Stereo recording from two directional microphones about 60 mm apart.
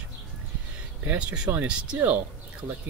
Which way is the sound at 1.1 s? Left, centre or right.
Right.